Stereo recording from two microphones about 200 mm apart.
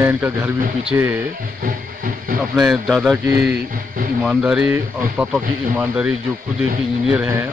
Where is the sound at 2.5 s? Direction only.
Centre (ahead or behind).